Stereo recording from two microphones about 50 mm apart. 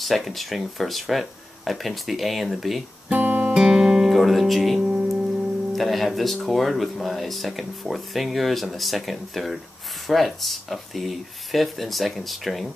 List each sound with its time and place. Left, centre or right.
0.0 s speech: centre
3.1 s guitar: right
3.5 s guitar: centre
5.7 s speech: centre